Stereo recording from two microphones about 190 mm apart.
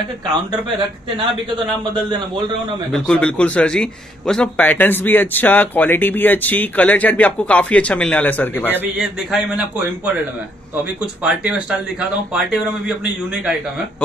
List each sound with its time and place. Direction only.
2.9 s a man's voice: 5° left (ahead or behind)
8.7 s a man's voice: 5° right (ahead or behind)
11.2 s a man's voice: 5° right (ahead or behind)